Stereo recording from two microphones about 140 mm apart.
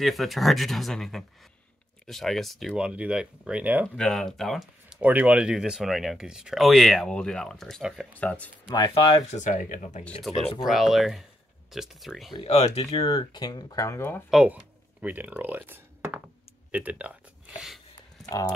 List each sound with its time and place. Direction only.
0.0 s speech: centre (ahead or behind)
3.9 s speech: 5° left (ahead or behind)
8.7 s speech: 35° left (ahead or behind)
9.3 s speech: 60° left (ahead or behind)
10.6 s speech: centre (ahead or behind)
12.3 s speech: 40° left (ahead or behind); by 14.2 s 15° left (ahead or behind)
14.3 s speech: 10° right (ahead or behind)